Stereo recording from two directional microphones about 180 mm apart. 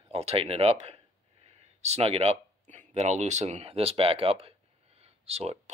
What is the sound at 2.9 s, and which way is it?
Speech, 40° right (ahead or behind).